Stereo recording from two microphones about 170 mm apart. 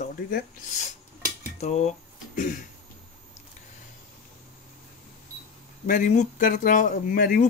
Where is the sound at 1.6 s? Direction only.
40° left (ahead or behind).